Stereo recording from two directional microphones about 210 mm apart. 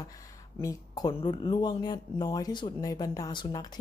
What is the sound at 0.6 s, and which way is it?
A woman's voice, 15° left (ahead or behind).